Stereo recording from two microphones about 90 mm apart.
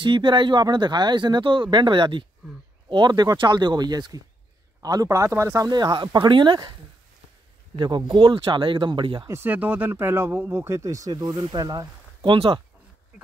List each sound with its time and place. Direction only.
0.0 s speech: 65° right (ahead or behind); by 5.7 s 35° right (ahead or behind)
5.7 s speech: 50° right (ahead or behind)
7.7 s speech: 60° right (ahead or behind)
9.3 s speech: 20° right (ahead or behind); by 12.3 s 50° right (ahead or behind)
12.3 s speech: 70° right (ahead or behind)